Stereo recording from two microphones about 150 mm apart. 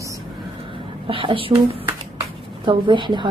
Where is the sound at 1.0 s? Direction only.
35° right (ahead or behind).